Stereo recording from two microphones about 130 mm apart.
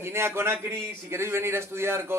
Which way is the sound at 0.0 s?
20° right (ahead or behind).